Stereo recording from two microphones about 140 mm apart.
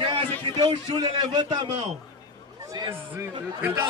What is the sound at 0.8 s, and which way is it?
Speech, 30° right (ahead or behind).